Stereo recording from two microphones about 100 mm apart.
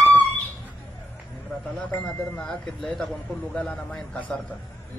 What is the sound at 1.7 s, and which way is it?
Speech, 10° left (ahead or behind).